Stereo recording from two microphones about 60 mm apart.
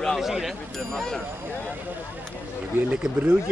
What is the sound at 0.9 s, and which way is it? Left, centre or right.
Speech, centre.